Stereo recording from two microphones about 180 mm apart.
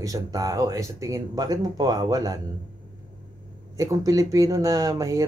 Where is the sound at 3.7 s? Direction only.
20° right (ahead or behind).